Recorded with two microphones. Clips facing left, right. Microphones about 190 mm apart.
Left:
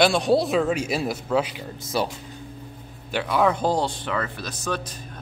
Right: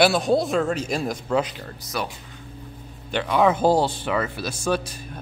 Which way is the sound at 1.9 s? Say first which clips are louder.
Left 4 dB; 30° left (ahead or behind).